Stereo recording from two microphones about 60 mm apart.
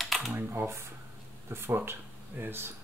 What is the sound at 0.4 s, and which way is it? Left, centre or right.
Speech, right.